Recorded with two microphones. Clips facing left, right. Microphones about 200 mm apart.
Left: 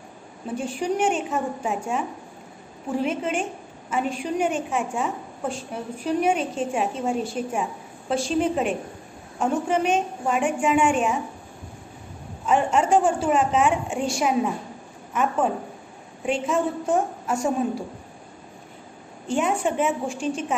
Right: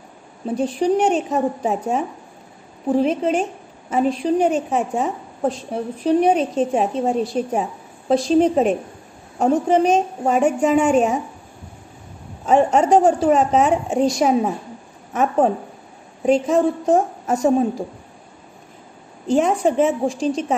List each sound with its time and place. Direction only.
0.5 s a woman's voice: 35° right (ahead or behind)
12.4 s a woman's voice: 40° right (ahead or behind)
19.6 s a woman's voice: 35° right (ahead or behind)